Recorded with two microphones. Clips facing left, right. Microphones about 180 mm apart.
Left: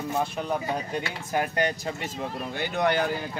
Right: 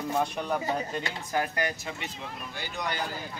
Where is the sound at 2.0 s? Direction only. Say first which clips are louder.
Left 7 dB; 50° left (ahead or behind).